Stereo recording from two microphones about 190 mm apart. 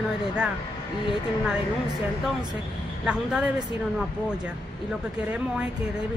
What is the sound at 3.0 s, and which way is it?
Speech, 5° right (ahead or behind).